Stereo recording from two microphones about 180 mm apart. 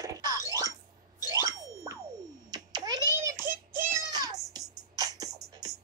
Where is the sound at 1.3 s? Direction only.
15° right (ahead or behind).